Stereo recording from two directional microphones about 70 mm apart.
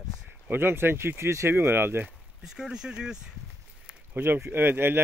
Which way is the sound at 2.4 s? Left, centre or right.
Centre.